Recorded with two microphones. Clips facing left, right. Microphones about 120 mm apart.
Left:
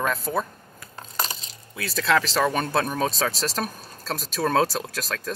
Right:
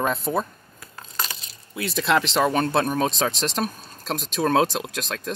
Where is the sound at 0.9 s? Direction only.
35° left (ahead or behind).